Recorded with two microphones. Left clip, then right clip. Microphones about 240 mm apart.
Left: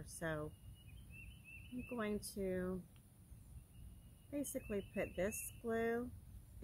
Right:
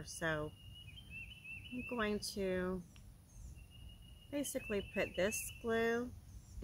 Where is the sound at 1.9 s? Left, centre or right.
Centre.